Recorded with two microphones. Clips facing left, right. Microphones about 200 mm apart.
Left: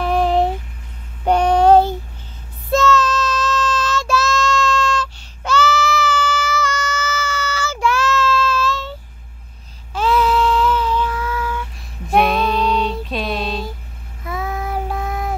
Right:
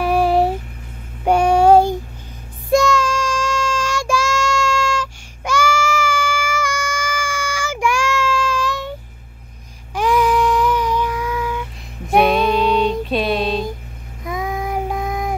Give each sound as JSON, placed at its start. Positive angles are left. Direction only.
{"t": 0.0, "sound": "a sound", "side_deg": -10}
{"t": 1.2, "sound": "child singing", "side_deg": -10}
{"t": 9.9, "sound": "child singing", "side_deg": -15}
{"t": 12.2, "sound": "music", "side_deg": 0}
{"t": 12.7, "sound": "music", "side_deg": -15}
{"t": 13.1, "sound": "music", "side_deg": 0}
{"t": 14.2, "sound": "child singing", "side_deg": -15}